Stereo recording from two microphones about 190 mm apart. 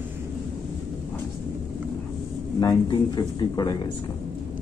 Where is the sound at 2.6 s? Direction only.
20° left (ahead or behind).